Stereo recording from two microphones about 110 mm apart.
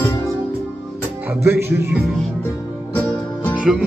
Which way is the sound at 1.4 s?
20° right (ahead or behind).